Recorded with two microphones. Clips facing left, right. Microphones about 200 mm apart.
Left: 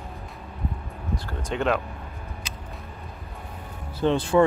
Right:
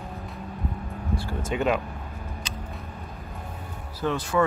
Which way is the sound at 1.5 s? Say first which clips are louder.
Even; 5° right (ahead or behind).